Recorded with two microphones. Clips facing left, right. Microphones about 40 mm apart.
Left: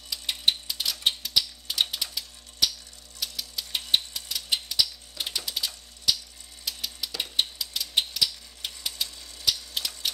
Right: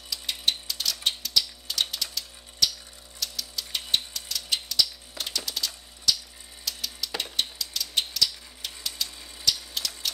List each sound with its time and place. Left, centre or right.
0.1 s typewriter: centre
3.2 s engine: centre
6.1 s a sound: centre
6.6 s ratchet: centre
7.3 s typewriter: centre